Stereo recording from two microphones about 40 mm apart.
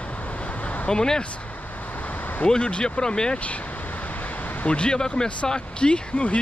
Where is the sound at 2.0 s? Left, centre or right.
Left.